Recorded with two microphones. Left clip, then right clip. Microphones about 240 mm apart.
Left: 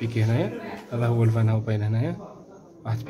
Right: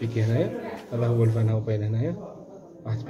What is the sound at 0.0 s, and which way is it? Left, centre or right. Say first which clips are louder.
A man's voice: even; left.